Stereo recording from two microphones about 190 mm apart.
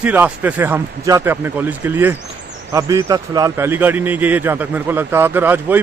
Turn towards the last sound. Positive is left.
turn(degrees=-10)  # may be behind; listen again after turning